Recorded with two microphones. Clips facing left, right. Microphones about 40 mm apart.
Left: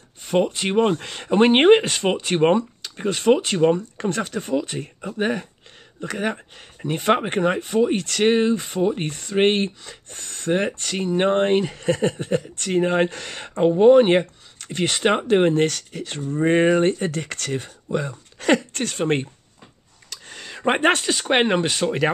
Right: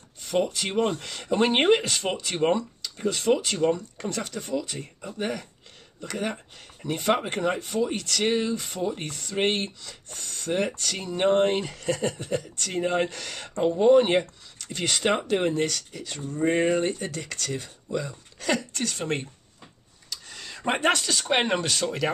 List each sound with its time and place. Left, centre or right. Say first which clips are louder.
0.2 s speech: left 5 dB; left